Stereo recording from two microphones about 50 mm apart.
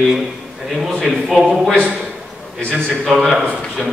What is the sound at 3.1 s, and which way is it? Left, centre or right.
Speech, centre.